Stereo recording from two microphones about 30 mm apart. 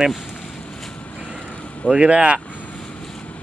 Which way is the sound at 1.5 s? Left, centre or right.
Left.